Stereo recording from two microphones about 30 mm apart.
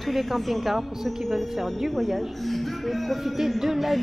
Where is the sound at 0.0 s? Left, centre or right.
Centre.